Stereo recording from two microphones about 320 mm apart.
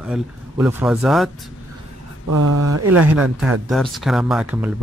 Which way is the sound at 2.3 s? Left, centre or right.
Right.